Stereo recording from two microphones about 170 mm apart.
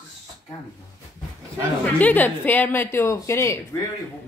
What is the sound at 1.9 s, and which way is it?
A woman's voice, 10° left (ahead or behind).